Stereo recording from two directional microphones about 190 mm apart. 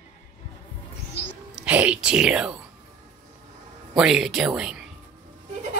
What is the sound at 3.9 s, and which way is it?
Speech, 5° right (ahead or behind).